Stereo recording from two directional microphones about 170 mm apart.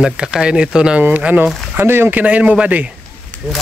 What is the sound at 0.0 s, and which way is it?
Speech, 5° right (ahead or behind).